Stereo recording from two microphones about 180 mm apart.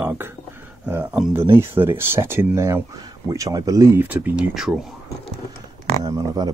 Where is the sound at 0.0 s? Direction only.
10° right (ahead or behind).